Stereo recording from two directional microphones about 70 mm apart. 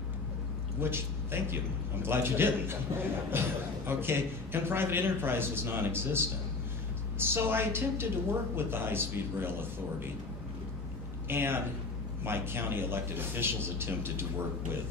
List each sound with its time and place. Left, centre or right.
0.7 s a man's voice: right
11.2 s a man's voice: right